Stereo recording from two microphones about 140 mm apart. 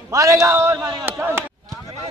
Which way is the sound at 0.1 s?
25° right (ahead or behind).